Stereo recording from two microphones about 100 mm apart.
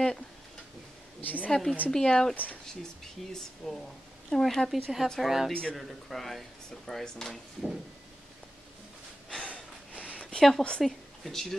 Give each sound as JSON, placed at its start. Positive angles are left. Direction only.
{"t": 1.2, "sound": "speech", "side_deg": 15}
{"t": 1.5, "sound": "speech", "side_deg": 5}
{"t": 3.3, "sound": "speech", "side_deg": 5}
{"t": 5.5, "sound": "speech", "side_deg": 10}
{"t": 9.3, "sound": "snort", "side_deg": 10}
{"t": 10.1, "sound": "a sound", "side_deg": 10}
{"t": 10.8, "sound": "a woman's voice", "side_deg": 0}